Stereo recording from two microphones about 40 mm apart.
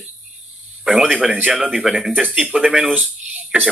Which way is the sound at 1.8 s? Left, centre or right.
Centre.